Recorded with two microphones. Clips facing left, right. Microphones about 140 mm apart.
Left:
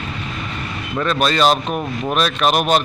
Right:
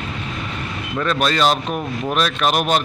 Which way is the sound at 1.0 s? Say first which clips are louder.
Left 2 dB; 5° left (ahead or behind).